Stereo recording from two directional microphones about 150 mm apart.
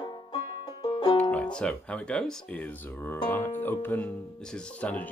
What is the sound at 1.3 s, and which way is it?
Speech, 5° left (ahead or behind).